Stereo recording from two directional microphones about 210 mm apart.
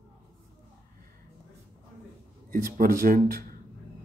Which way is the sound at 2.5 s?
40° right (ahead or behind).